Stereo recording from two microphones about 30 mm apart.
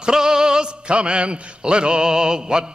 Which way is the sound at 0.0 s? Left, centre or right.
Centre.